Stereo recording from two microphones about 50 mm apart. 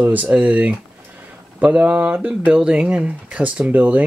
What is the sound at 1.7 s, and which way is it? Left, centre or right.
Speech, right.